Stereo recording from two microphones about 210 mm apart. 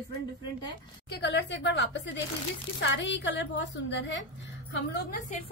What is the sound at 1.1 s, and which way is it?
A woman's voice, 55° left (ahead or behind).